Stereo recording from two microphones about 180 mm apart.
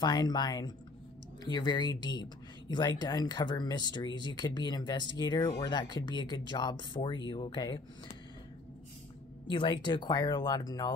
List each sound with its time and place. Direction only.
0.0 s speech: 25° left (ahead or behind)
9.5 s speech: 25° left (ahead or behind)